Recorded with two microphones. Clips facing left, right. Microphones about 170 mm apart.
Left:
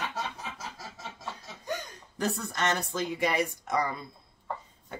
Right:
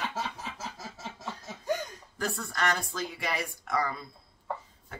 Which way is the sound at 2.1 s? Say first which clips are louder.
Left 3 dB; 20° left (ahead or behind).